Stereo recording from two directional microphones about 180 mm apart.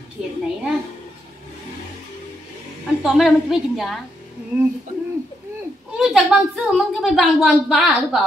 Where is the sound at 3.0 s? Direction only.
Centre (ahead or behind).